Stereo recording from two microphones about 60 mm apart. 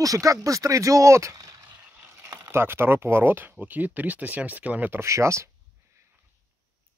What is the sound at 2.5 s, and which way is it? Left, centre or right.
Speech, right.